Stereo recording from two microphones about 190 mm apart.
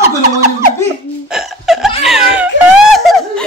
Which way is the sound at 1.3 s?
Centre (ahead or behind).